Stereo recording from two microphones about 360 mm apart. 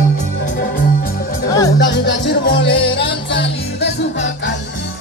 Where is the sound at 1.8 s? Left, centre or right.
Left.